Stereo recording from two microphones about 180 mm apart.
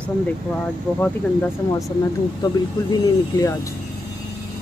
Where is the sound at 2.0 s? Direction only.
20° left (ahead or behind).